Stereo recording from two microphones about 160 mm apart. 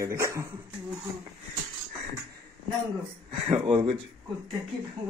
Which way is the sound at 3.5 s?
35° right (ahead or behind).